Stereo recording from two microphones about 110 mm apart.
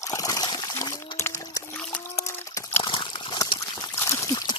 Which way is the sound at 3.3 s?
45° left (ahead or behind).